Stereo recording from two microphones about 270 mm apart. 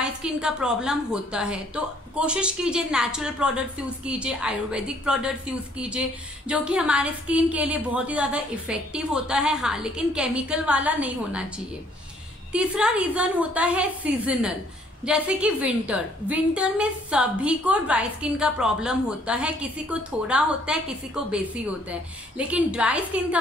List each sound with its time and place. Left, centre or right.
0.0 s a woman's voice: centre
12.5 s a woman's voice: centre